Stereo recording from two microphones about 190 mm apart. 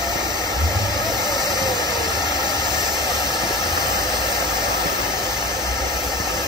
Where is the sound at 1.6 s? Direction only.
20° right (ahead or behind).